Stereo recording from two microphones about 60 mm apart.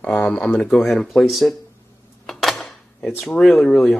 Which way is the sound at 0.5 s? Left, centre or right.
Left.